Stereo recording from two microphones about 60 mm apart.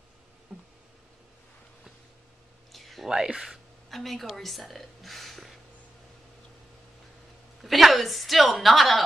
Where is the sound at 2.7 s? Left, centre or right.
Centre.